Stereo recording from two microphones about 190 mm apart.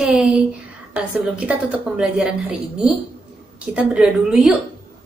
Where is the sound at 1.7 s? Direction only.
5° right (ahead or behind).